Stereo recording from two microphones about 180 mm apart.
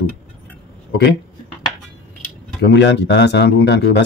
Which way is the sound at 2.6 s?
75° left (ahead or behind).